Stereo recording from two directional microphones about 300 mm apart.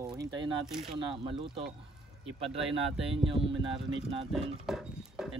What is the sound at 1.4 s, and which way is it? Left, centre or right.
Speech, centre.